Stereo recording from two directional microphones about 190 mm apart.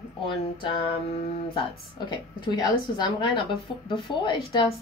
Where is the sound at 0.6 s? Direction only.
30° left (ahead or behind).